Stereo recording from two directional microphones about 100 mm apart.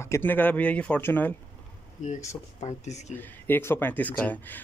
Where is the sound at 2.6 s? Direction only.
90° left.